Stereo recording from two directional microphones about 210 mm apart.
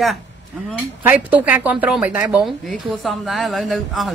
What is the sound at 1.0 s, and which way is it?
Speech, 5° right (ahead or behind).